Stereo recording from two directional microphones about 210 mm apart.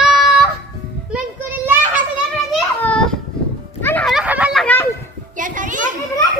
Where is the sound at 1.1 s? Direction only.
5° right (ahead or behind).